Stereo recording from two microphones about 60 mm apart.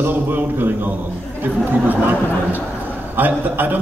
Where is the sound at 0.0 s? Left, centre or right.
Right.